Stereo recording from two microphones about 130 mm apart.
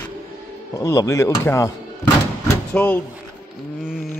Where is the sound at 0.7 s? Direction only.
25° left (ahead or behind).